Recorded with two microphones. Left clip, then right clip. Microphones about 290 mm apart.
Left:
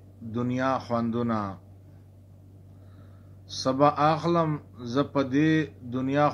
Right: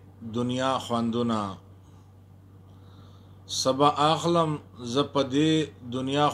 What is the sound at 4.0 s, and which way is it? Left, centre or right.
Speech, right.